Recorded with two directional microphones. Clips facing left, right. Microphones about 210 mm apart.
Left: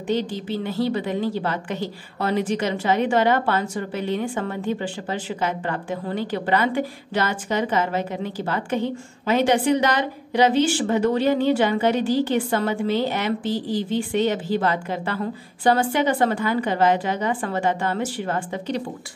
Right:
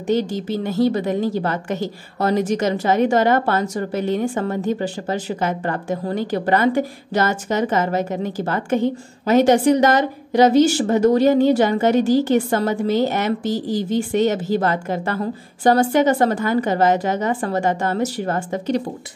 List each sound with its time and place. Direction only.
0.1 s a woman's voice: 45° right (ahead or behind)